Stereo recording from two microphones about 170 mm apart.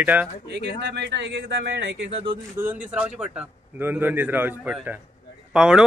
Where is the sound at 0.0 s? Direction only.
10° right (ahead or behind).